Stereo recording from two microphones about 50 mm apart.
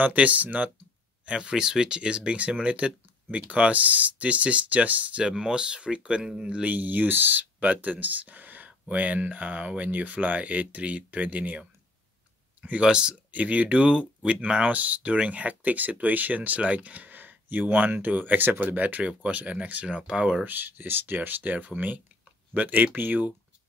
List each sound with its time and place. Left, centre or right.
0.0 s speech: right
1.2 s speech: centre
5.2 s speech: centre
6.7 s speech: right
12.8 s speech: centre
13.3 s speech: right
20.4 s speech: right